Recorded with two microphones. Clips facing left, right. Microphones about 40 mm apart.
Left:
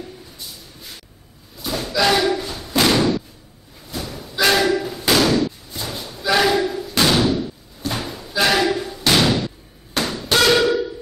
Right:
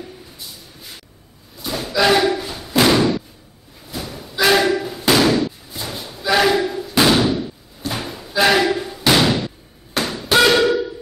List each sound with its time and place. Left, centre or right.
0.0 s a sound: centre
1.6 s slam: centre
9.9 s tap: centre